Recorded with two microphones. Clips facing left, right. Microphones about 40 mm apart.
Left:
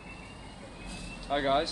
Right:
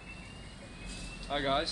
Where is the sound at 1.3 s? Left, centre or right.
Centre.